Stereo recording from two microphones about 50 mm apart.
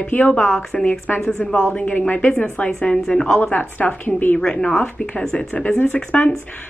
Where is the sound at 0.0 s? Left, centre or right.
Left.